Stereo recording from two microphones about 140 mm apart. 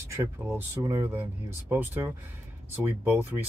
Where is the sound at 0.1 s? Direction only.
15° right (ahead or behind).